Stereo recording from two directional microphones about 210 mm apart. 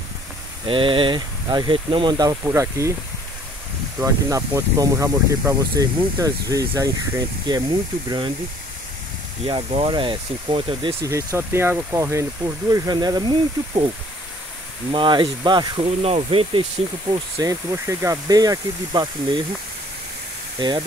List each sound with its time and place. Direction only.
0.7 s speech: 25° right (ahead or behind)
4.0 s speech: 15° right (ahead or behind)
9.5 s speech: 25° right (ahead or behind)
11.1 s speech: 15° right (ahead or behind)
14.9 s speech: 25° right (ahead or behind)
20.5 s speech: 20° right (ahead or behind)